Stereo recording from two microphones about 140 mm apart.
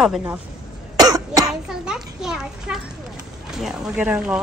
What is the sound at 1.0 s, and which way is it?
Cough, 25° right (ahead or behind).